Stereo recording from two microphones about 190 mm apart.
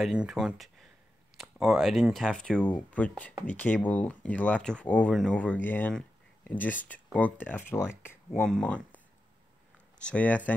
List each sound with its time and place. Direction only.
0.0 s speech: 5° right (ahead or behind)
10.0 s speech: 5° left (ahead or behind)